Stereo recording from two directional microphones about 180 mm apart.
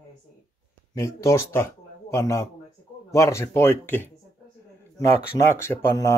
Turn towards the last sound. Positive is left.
turn(degrees=15)  # may be behind; listen again after turning